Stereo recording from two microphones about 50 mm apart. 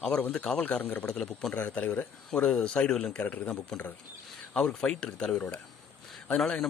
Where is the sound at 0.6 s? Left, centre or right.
Left.